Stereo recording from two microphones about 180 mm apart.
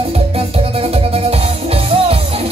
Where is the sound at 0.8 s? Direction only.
35° right (ahead or behind).